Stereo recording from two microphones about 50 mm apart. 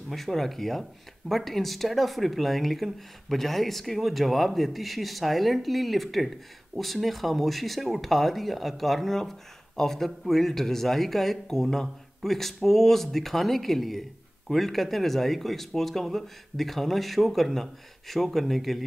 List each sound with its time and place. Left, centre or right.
0.1 s speech: centre